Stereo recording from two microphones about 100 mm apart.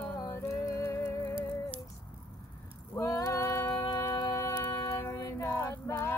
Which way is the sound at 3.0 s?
35° left (ahead or behind).